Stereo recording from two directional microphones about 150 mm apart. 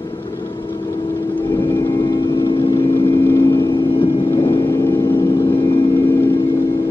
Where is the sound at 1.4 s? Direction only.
20° left (ahead or behind).